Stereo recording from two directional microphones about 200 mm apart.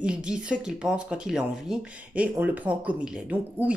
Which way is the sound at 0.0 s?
5° right (ahead or behind).